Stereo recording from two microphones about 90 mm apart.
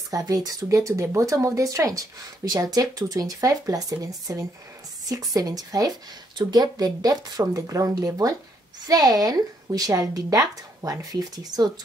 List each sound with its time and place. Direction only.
0.1 s speech: 45° right (ahead or behind)